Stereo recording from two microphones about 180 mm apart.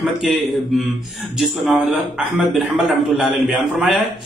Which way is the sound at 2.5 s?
Centre (ahead or behind).